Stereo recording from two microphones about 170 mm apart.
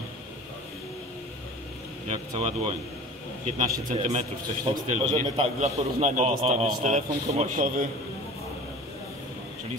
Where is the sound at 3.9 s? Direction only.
40° right (ahead or behind).